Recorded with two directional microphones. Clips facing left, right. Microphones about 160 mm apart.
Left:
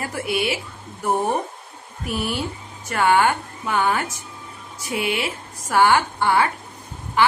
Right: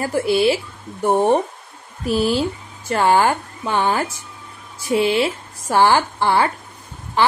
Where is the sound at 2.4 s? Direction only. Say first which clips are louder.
Right 6 dB; 30° right (ahead or behind).